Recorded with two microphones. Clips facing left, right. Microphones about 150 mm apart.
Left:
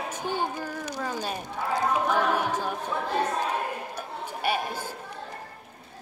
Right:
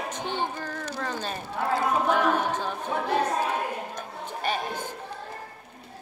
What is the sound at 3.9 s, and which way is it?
Chatter, 10° left (ahead or behind).